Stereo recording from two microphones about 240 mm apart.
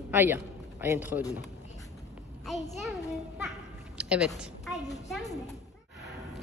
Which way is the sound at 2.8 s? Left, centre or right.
Centre.